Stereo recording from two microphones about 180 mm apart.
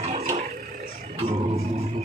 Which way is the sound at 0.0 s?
35° right (ahead or behind).